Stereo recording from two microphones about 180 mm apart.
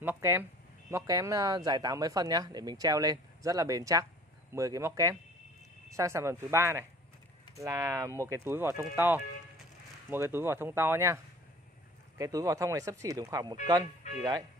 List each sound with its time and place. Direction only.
0.0 s speech: 15° right (ahead or behind)
12.2 s speech: 20° right (ahead or behind)